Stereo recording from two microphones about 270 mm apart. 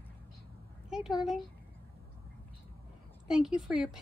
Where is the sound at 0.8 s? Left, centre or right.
Centre.